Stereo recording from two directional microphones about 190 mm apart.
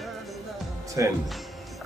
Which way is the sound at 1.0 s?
15° right (ahead or behind).